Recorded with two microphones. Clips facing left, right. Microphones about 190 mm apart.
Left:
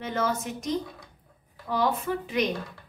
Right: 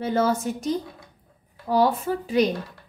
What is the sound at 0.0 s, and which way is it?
A woman's voice, 35° right (ahead or behind).